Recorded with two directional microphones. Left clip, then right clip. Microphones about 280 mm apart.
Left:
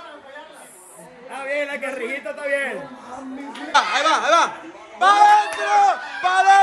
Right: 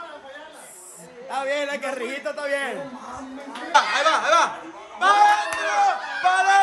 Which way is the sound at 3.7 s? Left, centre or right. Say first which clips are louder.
Left 1 dB; centre.